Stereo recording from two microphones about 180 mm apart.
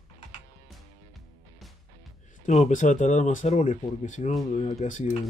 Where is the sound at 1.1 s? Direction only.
Centre (ahead or behind).